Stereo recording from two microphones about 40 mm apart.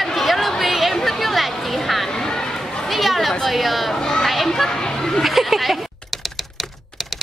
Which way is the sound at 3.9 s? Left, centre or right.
Centre.